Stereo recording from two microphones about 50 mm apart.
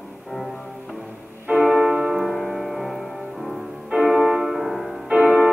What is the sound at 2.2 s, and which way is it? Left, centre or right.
Music, centre.